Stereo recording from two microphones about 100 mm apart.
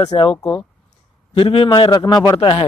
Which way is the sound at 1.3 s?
65° left (ahead or behind).